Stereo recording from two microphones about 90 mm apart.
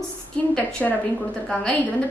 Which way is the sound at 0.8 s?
5° left (ahead or behind).